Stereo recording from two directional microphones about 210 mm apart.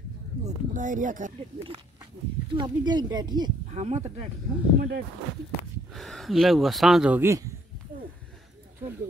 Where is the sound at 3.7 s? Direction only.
35° right (ahead or behind).